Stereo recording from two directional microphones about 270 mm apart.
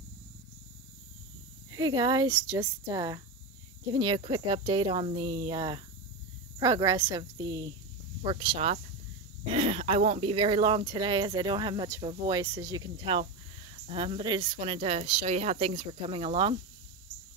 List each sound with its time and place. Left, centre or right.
1.7 s speech: centre